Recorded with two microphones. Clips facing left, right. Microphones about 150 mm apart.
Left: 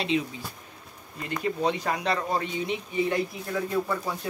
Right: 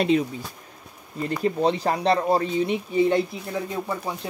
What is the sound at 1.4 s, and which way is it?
Speech, 35° right (ahead or behind).